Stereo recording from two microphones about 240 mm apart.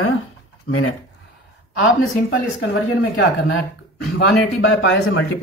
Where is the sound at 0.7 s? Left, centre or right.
Left.